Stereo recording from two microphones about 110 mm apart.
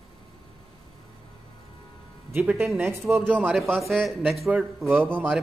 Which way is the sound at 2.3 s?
20° right (ahead or behind).